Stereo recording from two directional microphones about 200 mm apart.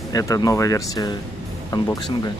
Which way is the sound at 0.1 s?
15° left (ahead or behind).